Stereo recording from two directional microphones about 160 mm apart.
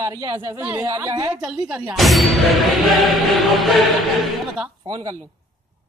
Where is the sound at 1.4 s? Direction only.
5° right (ahead or behind).